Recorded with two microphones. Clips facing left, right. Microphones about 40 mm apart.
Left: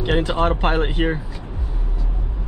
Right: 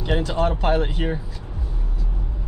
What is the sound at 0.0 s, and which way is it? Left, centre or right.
Speech, left.